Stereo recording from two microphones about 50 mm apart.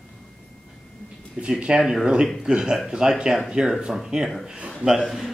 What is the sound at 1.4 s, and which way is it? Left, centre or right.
Speech, centre.